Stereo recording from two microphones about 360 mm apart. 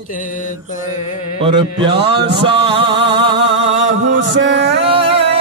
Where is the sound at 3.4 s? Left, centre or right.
Right.